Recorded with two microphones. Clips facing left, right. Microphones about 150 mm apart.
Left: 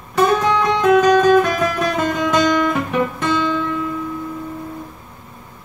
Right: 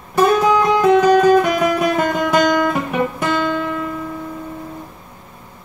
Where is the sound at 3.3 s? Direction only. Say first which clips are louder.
Even; 55° right (ahead or behind).